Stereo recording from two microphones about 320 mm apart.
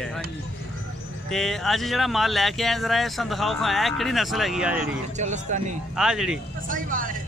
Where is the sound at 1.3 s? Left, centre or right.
Centre.